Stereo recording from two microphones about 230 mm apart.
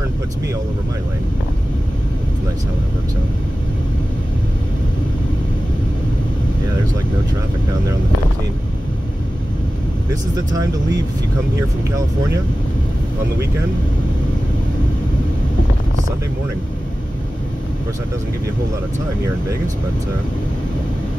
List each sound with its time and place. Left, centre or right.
10.3 s speech: centre